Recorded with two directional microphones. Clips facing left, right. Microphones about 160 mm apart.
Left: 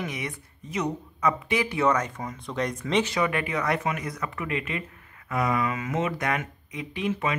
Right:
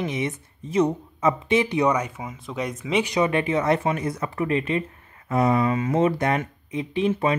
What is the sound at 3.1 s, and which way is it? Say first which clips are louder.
Speech: right 5 dB; 25° right (ahead or behind).